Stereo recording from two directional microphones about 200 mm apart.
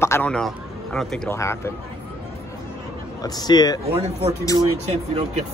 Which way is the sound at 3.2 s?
20° left (ahead or behind).